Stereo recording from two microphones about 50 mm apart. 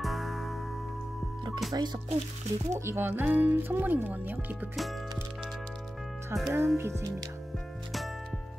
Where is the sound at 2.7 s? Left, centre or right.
Right.